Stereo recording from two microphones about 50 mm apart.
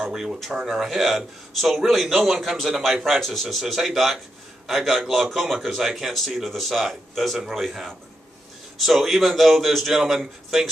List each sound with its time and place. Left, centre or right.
0.1 s a man's voice: centre